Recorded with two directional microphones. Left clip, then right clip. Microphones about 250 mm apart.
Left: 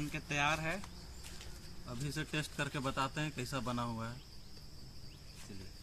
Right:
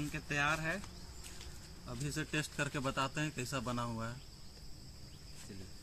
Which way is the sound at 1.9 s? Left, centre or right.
Centre.